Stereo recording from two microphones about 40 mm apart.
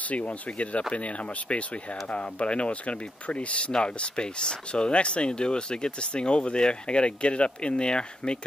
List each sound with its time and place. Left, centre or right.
0.1 s speech: left